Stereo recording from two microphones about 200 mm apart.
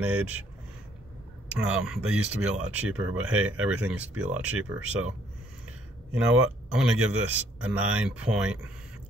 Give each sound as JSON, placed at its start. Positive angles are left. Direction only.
{"t": 0.0, "sound": "speech", "side_deg": -5}
{"t": 1.5, "sound": "speech", "side_deg": -5}
{"t": 6.7, "sound": "a man's voice", "side_deg": -5}